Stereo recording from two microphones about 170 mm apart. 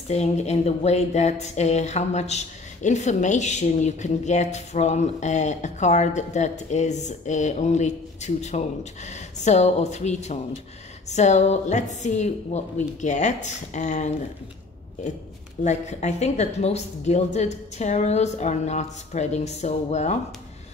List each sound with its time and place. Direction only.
0.1 s speech: 40° left (ahead or behind)
15.6 s a woman's voice: 45° left (ahead or behind)